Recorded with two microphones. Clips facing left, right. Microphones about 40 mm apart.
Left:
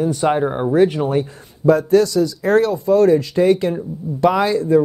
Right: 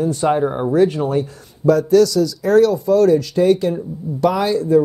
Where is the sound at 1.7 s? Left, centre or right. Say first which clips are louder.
Right 1 dB; left.